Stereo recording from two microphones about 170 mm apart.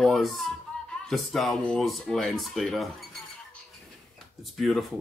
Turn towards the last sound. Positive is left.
turn(degrees=0)  # may be behind; listen again after turning